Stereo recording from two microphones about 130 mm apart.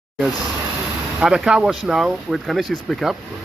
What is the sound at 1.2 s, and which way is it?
Speech, 5° right (ahead or behind).